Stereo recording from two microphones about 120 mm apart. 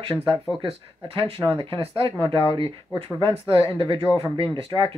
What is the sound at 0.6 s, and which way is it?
Speech, 50° right (ahead or behind).